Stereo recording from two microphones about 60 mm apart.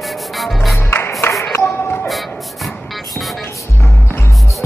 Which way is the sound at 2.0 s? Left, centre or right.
Centre.